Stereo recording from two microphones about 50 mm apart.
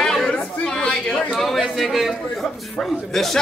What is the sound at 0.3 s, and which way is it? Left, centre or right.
Chatter, left.